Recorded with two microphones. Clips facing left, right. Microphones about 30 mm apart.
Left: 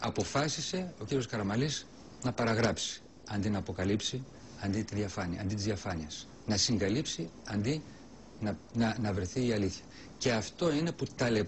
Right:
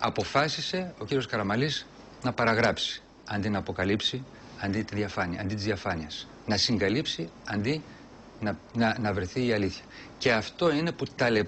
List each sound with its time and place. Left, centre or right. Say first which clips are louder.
0.0 s speech: right 6 dB; right